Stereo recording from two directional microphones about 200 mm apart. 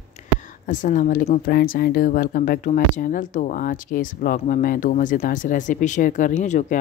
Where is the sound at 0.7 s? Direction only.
40° left (ahead or behind).